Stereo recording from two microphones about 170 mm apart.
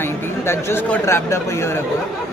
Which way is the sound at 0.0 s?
15° left (ahead or behind).